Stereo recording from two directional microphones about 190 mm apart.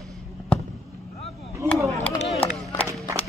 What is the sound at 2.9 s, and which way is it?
Crowd, 15° right (ahead or behind).